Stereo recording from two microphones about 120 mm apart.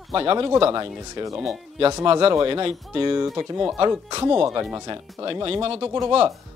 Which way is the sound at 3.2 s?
25° right (ahead or behind).